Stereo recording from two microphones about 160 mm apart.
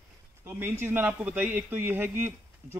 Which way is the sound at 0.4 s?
15° right (ahead or behind).